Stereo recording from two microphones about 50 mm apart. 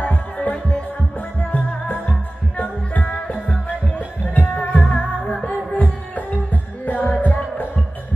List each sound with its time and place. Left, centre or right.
0.0 s music: left
4.6 s music: left
5.7 s music: left